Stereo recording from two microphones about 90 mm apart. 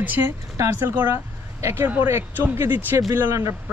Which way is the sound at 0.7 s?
20° right (ahead or behind).